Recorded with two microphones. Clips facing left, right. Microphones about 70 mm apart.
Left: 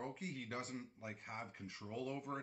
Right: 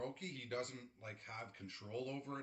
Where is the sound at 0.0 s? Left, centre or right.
Centre.